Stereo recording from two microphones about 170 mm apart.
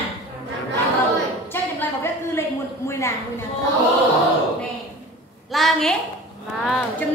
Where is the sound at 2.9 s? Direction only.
15° left (ahead or behind).